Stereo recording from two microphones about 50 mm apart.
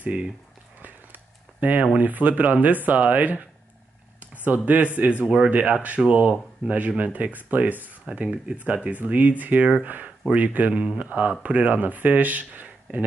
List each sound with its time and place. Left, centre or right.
0.8 s a sound: right
2.0 s speech: right
4.2 s a sound: right
5.2 s speech: centre
5.5 s speech: right
10.7 s speech: centre
11.1 s speech: right